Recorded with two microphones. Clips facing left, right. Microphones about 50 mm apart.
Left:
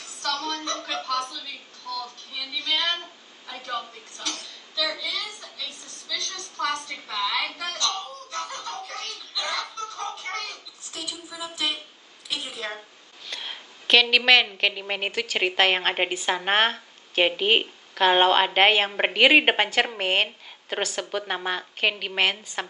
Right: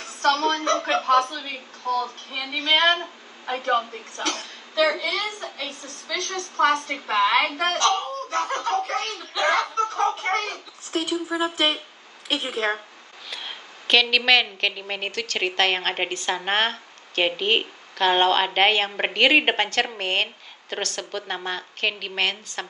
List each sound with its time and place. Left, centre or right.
0.0 s a woman's voice: right
13.3 s a woman's voice: centre